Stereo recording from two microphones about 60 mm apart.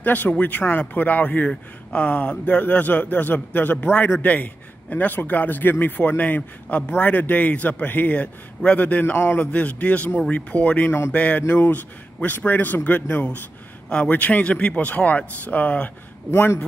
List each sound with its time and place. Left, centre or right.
0.0 s speech: left
9.1 s a man's voice: left
9.4 s a man's voice: left
16.3 s a man's voice: left